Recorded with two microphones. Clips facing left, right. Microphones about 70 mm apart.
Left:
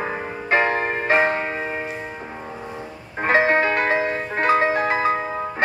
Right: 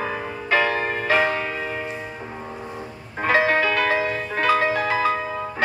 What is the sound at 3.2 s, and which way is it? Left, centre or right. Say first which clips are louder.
Music: left 1 dB; left.